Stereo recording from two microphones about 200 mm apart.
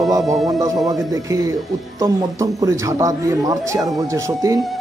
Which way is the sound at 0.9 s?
20° right (ahead or behind).